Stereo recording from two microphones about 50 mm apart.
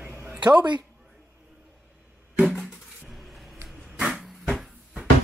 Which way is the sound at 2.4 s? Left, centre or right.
Centre.